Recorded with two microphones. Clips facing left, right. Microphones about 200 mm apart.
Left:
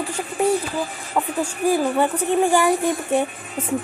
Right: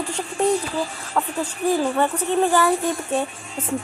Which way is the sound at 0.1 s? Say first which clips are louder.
Even; 5° left (ahead or behind).